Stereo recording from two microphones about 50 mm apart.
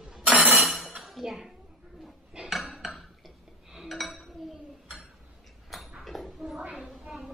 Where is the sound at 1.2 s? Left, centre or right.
Centre.